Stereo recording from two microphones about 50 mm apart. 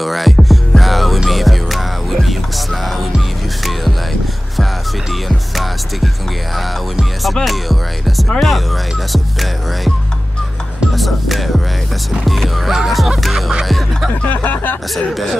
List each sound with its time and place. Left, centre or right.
0.0 s music: centre
7.4 s music: centre
11.0 s music: centre
14.2 s a sound: left